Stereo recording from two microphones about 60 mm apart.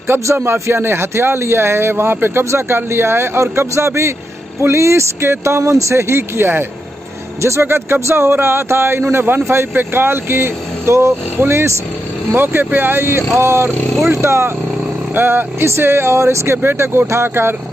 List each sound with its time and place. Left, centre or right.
0.1 s a man's voice: right
12.3 s a man's voice: right